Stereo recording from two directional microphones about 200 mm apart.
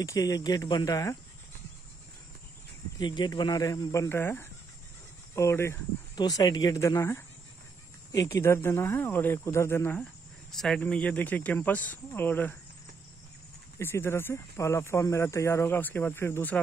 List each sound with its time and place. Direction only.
0.0 s speech: 15° left (ahead or behind)
3.0 s speech: 20° left (ahead or behind)
13.7 s speech: 10° left (ahead or behind)